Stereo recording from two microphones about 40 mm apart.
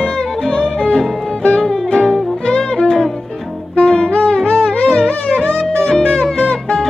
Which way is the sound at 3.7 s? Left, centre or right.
Left.